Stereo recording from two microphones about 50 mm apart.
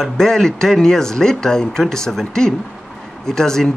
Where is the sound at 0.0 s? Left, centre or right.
Centre.